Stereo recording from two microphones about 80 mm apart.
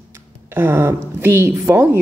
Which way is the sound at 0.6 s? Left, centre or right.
Right.